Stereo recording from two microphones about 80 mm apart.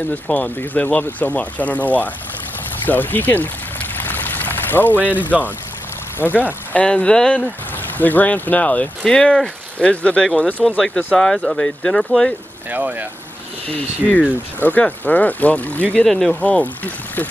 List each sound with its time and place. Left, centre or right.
0.1 s speech: centre
3.9 s pour: left
6.2 s speech: right
6.7 s speech: centre
7.7 s speech: left; by 12.4 s centre
12.7 s speech: right
13.7 s speech: centre
16.1 s speech: centre
16.3 s speech: centre